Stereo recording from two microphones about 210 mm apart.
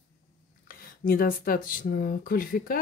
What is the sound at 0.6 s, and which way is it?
Speech, 45° left (ahead or behind).